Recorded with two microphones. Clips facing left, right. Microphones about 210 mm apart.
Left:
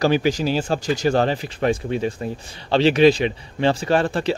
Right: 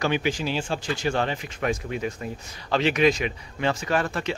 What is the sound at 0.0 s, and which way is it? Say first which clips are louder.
Speech: left 6 dB; 35° left (ahead or behind).